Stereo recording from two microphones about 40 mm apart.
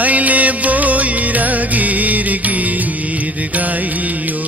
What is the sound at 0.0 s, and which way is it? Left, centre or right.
Music, right.